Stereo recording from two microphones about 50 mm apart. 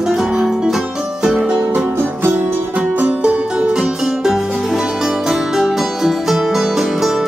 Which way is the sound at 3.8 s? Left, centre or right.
Centre.